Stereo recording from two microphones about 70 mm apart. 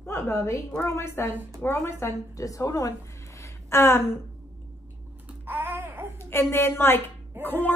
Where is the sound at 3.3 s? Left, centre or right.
Left.